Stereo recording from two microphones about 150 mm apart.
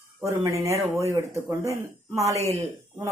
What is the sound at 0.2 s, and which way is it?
Speech, 20° right (ahead or behind).